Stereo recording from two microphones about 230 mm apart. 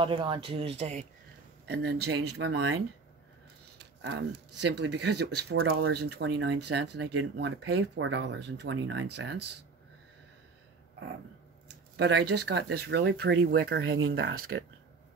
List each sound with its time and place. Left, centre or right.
0.0 s speech: right
1.7 s speech: right
3.7 s a sound: right
4.6 s speech: right
11.6 s speech: right